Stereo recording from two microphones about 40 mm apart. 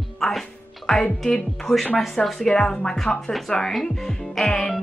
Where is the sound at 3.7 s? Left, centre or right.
Centre.